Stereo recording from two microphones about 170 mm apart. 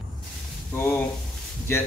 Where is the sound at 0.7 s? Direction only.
10° left (ahead or behind).